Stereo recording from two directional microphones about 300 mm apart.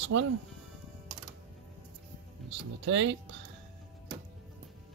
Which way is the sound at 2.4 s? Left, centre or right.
Right.